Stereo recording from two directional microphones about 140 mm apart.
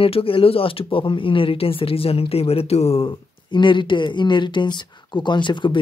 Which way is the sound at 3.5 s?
35° left (ahead or behind).